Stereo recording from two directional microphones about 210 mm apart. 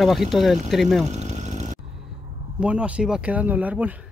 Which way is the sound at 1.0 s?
35° right (ahead or behind).